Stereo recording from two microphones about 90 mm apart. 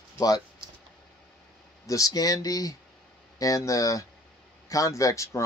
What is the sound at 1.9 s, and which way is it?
Speech, 40° left (ahead or behind).